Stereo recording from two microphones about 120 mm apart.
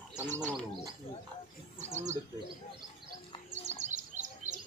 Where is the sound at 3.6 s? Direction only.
75° right (ahead or behind).